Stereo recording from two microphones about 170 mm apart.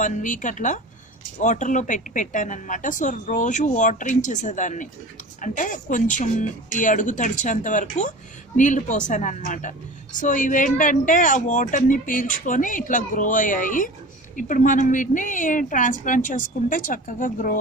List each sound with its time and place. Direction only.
0.0 s a woman's voice: 50° left (ahead or behind)